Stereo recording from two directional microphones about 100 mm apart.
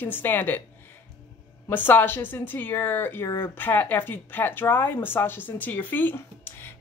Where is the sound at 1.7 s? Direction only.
20° left (ahead or behind).